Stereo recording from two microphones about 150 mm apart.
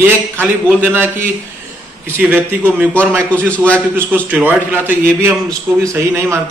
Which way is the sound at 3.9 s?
10° right (ahead or behind).